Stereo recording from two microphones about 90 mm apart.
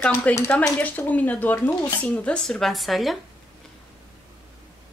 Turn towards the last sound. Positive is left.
turn(degrees=0)  # may be behind; listen again after turning